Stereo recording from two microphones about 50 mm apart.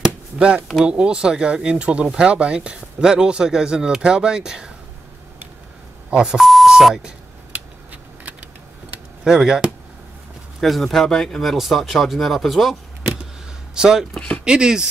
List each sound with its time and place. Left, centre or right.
0.4 s speech: right
6.0 s beep: centre
6.4 s speech: centre
7.5 s a sound: right
9.2 s speech: centre
10.6 s speech: centre
13.7 s speech: centre